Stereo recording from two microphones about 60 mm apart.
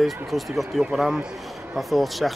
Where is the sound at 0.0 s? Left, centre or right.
Centre.